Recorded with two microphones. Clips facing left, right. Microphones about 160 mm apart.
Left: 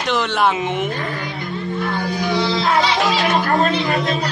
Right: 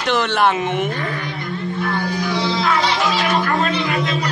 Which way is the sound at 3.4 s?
45° left (ahead or behind).